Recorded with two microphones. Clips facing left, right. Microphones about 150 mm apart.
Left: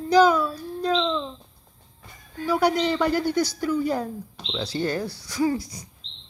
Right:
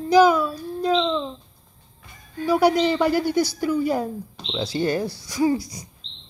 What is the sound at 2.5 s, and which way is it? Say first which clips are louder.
A woman's voice: right 3 dB; 10° right (ahead or behind).